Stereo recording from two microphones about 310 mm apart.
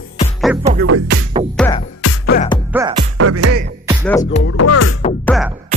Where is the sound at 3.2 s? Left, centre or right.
Right.